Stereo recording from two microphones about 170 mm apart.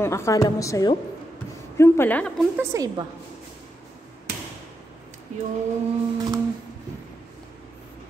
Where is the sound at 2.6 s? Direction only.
20° right (ahead or behind).